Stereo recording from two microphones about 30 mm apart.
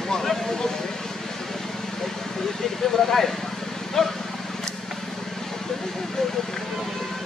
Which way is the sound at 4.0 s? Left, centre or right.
Centre.